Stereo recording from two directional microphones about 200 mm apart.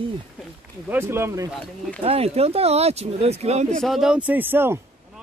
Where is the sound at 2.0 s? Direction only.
30° right (ahead or behind).